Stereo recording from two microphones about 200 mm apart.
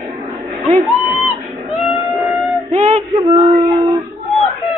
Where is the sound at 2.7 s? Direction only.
30° right (ahead or behind).